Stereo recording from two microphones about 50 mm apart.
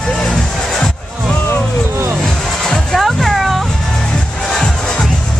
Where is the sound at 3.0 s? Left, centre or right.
Centre.